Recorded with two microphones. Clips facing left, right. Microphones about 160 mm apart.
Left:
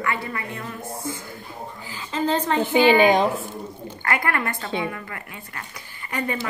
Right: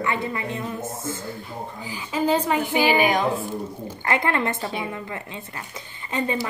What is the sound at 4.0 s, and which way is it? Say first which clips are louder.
Speech: right 2 dB; 20° right (ahead or behind).